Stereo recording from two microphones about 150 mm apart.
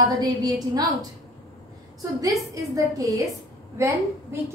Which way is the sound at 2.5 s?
20° right (ahead or behind).